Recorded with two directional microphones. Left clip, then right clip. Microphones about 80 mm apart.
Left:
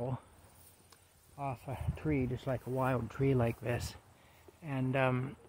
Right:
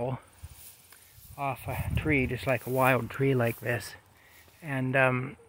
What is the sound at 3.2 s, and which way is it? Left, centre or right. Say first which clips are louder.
Speech: right 4 dB; centre.